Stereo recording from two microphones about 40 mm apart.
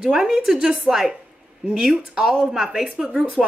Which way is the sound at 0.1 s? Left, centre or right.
Centre.